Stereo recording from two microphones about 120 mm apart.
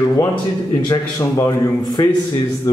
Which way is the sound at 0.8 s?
30° left (ahead or behind).